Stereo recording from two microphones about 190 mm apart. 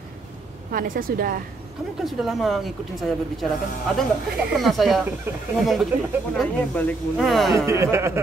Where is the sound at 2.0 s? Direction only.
Centre (ahead or behind).